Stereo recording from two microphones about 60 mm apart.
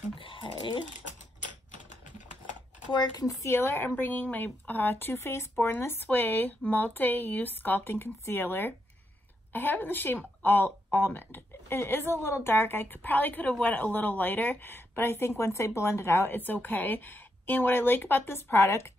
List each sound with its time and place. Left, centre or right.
3.4 s a woman's voice: left